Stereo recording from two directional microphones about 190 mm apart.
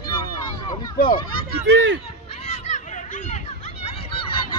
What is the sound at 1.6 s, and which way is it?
Speech, 75° right (ahead or behind).